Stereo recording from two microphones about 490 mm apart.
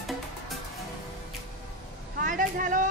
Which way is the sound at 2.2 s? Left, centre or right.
Centre.